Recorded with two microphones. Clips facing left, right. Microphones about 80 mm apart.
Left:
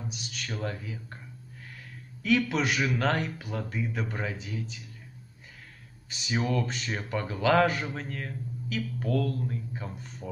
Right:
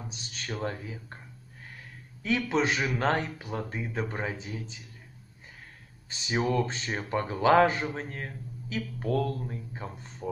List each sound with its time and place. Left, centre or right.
0.1 s a man's voice: right
2.2 s a man's voice: right
6.0 s a man's voice: right